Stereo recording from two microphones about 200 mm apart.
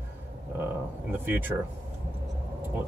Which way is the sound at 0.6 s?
10° right (ahead or behind).